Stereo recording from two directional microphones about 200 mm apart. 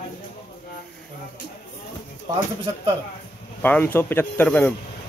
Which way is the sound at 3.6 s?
10° left (ahead or behind).